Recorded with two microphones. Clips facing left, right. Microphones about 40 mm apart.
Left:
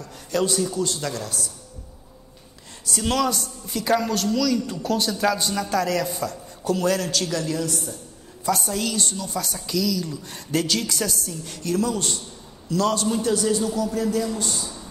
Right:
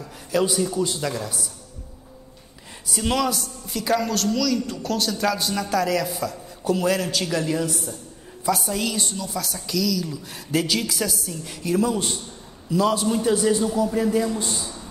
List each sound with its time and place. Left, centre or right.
0.0 s speech: centre
2.9 s a woman's voice: centre
8.5 s a woman's voice: centre